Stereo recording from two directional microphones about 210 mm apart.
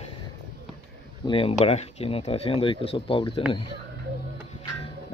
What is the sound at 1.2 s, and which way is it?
Speech, 25° left (ahead or behind).